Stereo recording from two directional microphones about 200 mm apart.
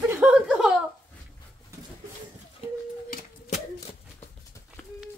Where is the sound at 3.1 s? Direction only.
40° left (ahead or behind).